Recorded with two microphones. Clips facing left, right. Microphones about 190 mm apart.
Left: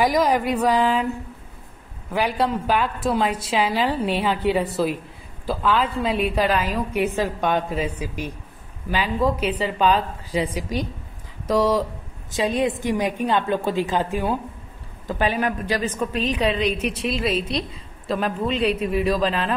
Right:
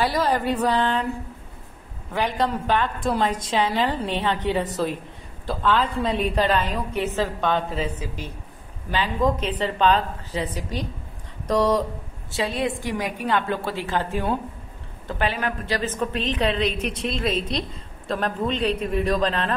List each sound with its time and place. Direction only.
0.0 s a woman's voice: 10° left (ahead or behind)
2.1 s a woman's voice: 10° left (ahead or behind)
12.3 s a woman's voice: 15° left (ahead or behind)